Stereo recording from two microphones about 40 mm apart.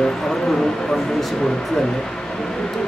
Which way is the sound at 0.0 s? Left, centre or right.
Centre.